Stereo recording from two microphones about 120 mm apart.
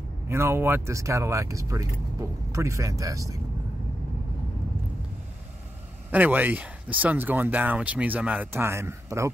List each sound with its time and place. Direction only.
0.3 s speech: 20° right (ahead or behind)
6.0 s speech: 15° right (ahead or behind)